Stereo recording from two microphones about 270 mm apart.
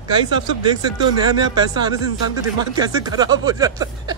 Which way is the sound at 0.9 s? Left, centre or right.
Centre.